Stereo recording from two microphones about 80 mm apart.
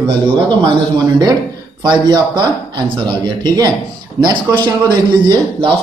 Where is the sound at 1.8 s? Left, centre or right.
Right.